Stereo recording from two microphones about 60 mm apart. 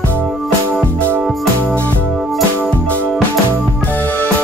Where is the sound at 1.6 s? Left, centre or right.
Left.